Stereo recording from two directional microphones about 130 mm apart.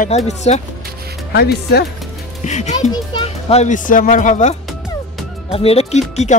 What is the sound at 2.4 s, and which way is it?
Speech, 65° left (ahead or behind).